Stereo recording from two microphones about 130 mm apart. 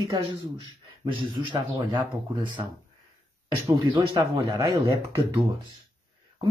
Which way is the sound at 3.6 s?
30° right (ahead or behind).